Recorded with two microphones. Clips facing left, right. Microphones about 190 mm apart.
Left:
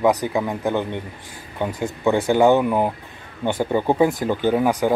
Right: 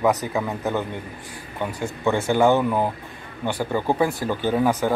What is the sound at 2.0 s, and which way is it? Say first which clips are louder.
Speech: left 3 dB; 15° left (ahead or behind).